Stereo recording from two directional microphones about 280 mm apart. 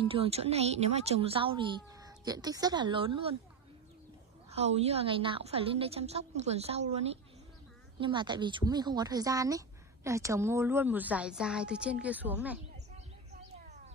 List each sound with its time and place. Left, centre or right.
0.0 s speech: centre
4.5 s a woman's voice: right; by 12.5 s centre